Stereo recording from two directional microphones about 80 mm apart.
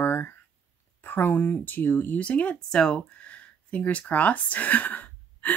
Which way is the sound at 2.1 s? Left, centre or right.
Centre.